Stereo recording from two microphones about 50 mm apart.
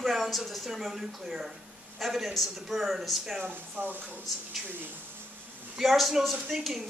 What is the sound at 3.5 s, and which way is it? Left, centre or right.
Speech, right.